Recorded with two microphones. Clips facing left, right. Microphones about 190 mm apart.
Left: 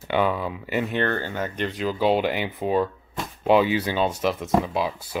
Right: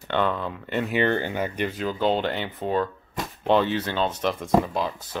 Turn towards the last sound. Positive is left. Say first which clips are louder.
# left 2 dB
turn(degrees=5)  # may be behind; listen again after turning